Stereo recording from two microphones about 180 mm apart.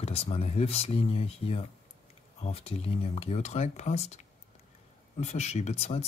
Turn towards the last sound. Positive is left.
turn(degrees=35)  # may be behind; listen again after turning